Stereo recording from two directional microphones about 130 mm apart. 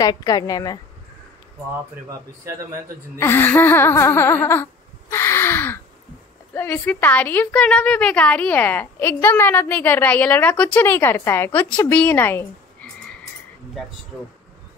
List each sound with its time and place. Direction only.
0.0 s speech: 30° left (ahead or behind)
2.0 s a man's voice: 25° right (ahead or behind)
3.2 s speech: 15° left (ahead or behind)
5.1 s gasp: 20° left (ahead or behind)
6.5 s a woman's voice: 15° left (ahead or behind)